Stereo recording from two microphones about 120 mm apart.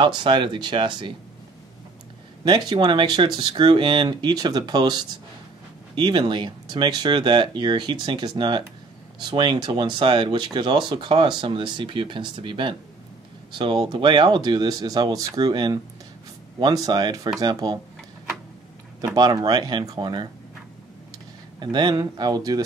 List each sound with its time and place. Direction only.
0.0 s speech: 40° right (ahead or behind)
2.4 s speech: 40° right (ahead or behind)
19.1 s speech: 35° right (ahead or behind)
21.5 s speech: 40° right (ahead or behind)